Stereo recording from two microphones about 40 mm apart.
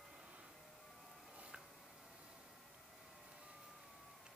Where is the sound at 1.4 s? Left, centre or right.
Right.